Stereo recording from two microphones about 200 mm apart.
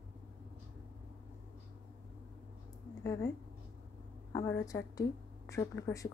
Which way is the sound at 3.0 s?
15° left (ahead or behind).